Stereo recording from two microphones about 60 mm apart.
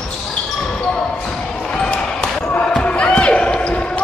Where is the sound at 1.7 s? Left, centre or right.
Centre.